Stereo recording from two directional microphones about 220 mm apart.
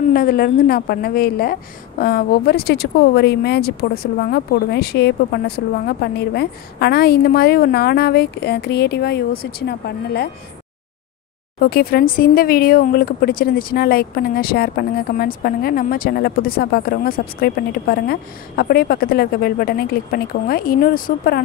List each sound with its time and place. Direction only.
0.1 s speech: 40° left (ahead or behind)
11.6 s speech: 45° left (ahead or behind)